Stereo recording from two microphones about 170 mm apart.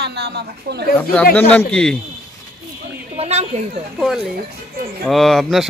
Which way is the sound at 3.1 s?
40° right (ahead or behind).